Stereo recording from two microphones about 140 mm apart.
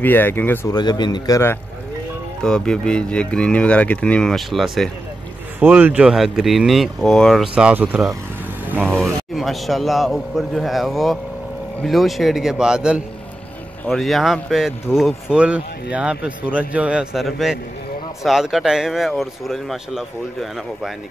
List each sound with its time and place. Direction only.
0.0 s speech: 15° left (ahead or behind)
0.7 s a man's voice: 30° left (ahead or behind)
2.4 s speech: 5° left (ahead or behind)
5.6 s speech: 10° right (ahead or behind)
7.5 s speech: 10° right (ahead or behind)
9.3 s speech: centre (ahead or behind)